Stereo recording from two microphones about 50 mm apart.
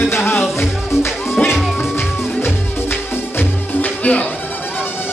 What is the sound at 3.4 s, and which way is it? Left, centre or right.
Music, left.